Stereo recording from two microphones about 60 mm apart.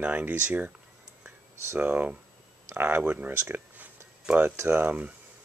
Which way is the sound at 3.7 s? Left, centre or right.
Right.